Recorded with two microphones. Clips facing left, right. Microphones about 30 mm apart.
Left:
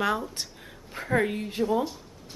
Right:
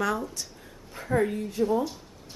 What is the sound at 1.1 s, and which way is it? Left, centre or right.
Speech, left.